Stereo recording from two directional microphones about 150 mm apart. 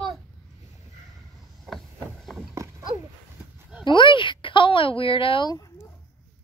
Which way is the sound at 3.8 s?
30° left (ahead or behind).